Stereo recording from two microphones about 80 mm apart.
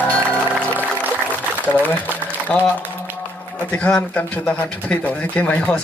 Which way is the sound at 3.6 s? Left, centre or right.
Centre.